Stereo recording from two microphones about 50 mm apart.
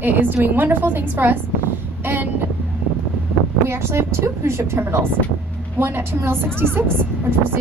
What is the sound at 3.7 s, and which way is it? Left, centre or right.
A woman's voice, right.